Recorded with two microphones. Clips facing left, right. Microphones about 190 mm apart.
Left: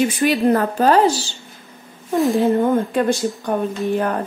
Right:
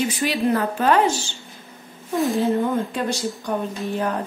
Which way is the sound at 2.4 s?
50° left (ahead or behind).